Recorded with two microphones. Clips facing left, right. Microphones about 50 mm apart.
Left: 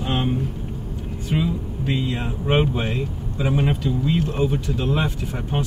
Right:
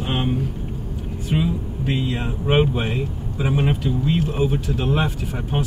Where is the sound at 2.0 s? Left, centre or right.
Centre.